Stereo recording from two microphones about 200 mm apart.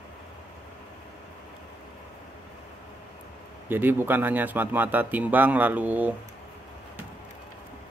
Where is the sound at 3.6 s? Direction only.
10° right (ahead or behind).